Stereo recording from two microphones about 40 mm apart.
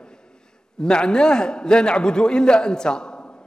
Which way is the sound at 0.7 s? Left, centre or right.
Left.